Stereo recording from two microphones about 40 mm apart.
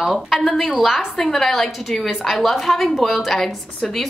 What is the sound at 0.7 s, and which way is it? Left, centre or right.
Speech, centre.